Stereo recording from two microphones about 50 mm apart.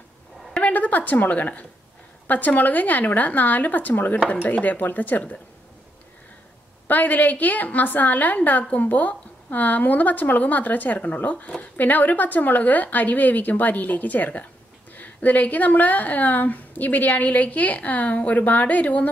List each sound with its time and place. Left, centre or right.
0.6 s a woman's voice: left
6.9 s a woman's voice: left